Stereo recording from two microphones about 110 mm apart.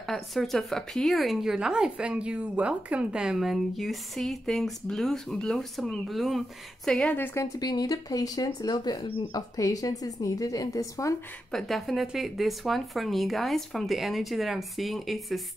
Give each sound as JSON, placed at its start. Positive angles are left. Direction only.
{"t": 0.0, "sound": "speech", "side_deg": 0}
{"t": 7.3, "sound": "a woman's voice", "side_deg": 35}
{"t": 11.5, "sound": "speech", "side_deg": 0}